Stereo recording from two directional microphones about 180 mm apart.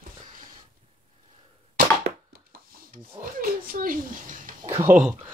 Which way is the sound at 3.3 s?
50° right (ahead or behind).